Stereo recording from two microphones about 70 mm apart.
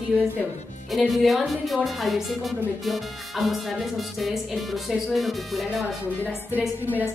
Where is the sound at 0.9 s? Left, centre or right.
Centre.